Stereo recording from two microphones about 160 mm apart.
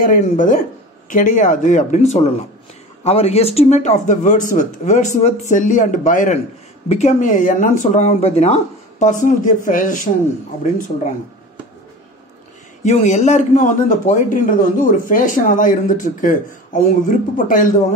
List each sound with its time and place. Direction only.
0.0 s speech: 55° left (ahead or behind)
9.0 s speech: 55° left (ahead or behind)
12.8 s a man's voice: 45° left (ahead or behind)